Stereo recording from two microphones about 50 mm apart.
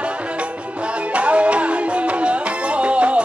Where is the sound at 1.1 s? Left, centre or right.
Right.